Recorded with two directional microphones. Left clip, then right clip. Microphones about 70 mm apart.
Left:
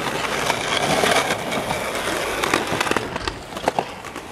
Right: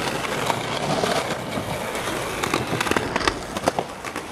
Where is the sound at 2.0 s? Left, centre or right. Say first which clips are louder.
Left 3 dB; centre.